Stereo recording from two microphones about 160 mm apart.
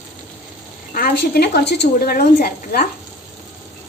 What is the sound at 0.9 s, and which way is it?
A woman's voice, 70° left (ahead or behind).